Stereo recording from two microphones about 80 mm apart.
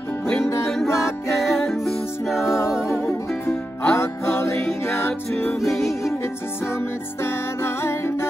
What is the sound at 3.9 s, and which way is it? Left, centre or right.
Music, left.